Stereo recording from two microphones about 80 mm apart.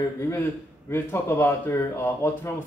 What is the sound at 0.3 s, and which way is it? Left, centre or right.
A man's voice, left.